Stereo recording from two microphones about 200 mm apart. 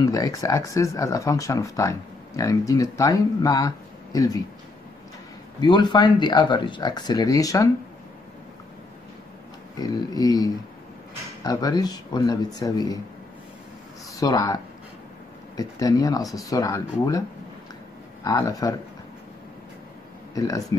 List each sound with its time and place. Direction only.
0.0 s speech: 15° left (ahead or behind)
5.6 s speech: 20° left (ahead or behind)
9.8 s speech: 20° left (ahead or behind)
14.2 s speech: 20° left (ahead or behind)
18.2 s speech: 20° left (ahead or behind)
20.3 s speech: 15° left (ahead or behind)